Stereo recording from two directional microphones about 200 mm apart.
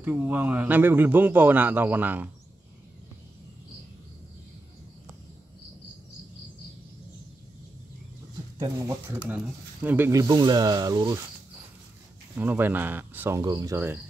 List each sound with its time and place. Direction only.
0.0 s a man's voice: 10° right (ahead or behind)
8.5 s a man's voice: 15° right (ahead or behind)
12.4 s a man's voice: 10° right (ahead or behind)